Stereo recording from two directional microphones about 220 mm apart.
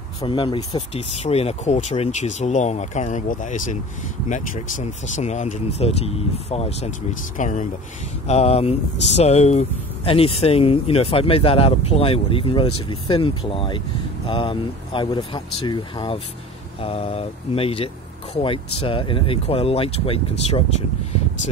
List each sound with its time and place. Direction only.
0.2 s speech: 20° left (ahead or behind)